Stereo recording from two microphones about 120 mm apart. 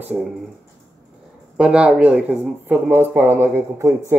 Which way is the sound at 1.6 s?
5° right (ahead or behind).